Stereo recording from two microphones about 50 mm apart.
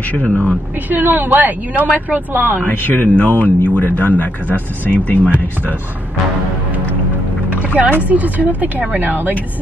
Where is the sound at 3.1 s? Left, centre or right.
Right.